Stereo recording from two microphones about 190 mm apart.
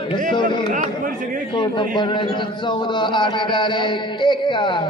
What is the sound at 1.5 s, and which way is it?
A man's voice, 25° left (ahead or behind).